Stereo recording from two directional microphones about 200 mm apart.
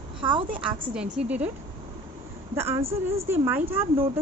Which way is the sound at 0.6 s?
5° right (ahead or behind).